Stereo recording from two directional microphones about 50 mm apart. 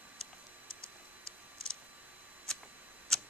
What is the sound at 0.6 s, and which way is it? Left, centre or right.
Typing, right.